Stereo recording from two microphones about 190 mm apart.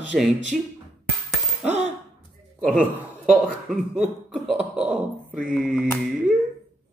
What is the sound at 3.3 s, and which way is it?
Speech, centre (ahead or behind).